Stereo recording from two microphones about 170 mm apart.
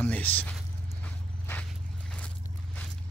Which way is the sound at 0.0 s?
10° left (ahead or behind).